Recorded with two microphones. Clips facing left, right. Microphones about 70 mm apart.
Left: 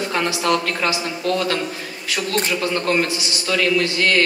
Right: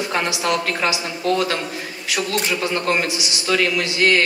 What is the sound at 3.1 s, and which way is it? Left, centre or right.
Speech, centre.